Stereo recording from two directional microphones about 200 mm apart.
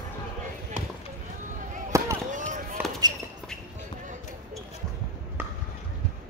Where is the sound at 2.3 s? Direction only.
40° right (ahead or behind).